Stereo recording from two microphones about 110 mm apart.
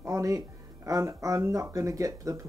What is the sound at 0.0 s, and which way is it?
Music, 30° right (ahead or behind).